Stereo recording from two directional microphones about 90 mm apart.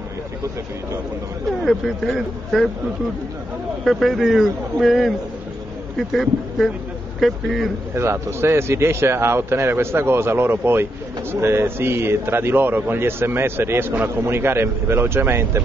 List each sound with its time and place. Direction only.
1.7 s speech: centre (ahead or behind)
3.8 s speech: centre (ahead or behind)
7.9 s a man's voice: 30° right (ahead or behind)